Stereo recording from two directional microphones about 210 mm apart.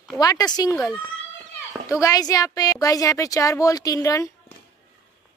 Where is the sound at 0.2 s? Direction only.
20° left (ahead or behind).